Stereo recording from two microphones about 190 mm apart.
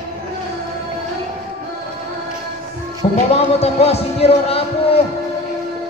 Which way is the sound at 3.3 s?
30° left (ahead or behind).